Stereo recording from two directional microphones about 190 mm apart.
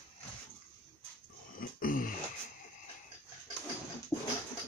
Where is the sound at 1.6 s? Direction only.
45° left (ahead or behind).